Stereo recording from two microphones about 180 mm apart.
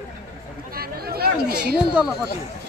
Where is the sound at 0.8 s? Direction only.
60° right (ahead or behind).